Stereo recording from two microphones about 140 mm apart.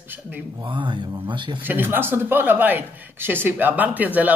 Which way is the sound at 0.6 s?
35° right (ahead or behind).